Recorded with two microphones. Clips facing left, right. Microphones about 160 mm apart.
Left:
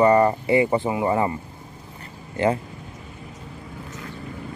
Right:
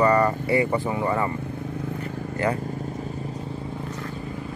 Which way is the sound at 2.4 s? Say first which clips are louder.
Left 4 dB; 25° left (ahead or behind).